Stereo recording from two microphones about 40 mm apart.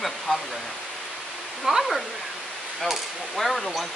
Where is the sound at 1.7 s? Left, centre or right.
Centre.